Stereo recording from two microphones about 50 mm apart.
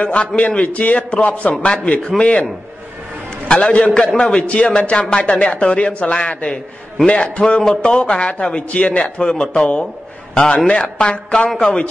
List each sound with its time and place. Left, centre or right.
0.0 s a man's voice: left
3.4 s a man's voice: centre